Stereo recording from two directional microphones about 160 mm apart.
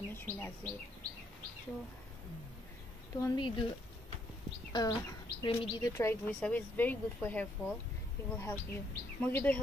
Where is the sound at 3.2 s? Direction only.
30° left (ahead or behind).